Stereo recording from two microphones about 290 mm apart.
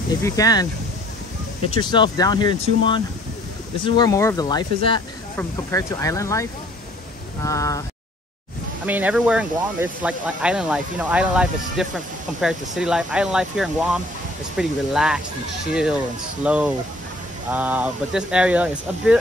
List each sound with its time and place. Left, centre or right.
0.2 s speech: centre
1.7 s speech: centre
7.4 s speech: centre
8.8 s speech: centre